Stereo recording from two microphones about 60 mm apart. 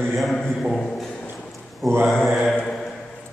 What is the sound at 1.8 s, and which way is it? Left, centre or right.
Mantra, centre.